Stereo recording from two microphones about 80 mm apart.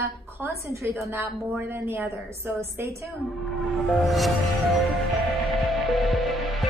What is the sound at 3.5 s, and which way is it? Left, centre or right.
Music, centre.